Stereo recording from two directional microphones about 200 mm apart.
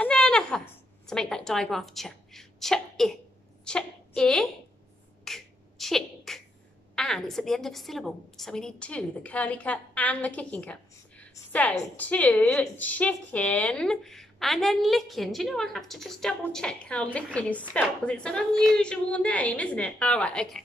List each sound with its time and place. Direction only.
0.0 s a sound: 5° left (ahead or behind)
1.0 s a woman's voice: 5° left (ahead or behind)
5.2 s beatboxing: centre (ahead or behind)
7.0 s a woman's voice: centre (ahead or behind)